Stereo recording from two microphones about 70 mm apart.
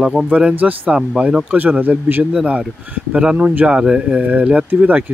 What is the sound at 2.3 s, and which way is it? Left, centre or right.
Speech, centre.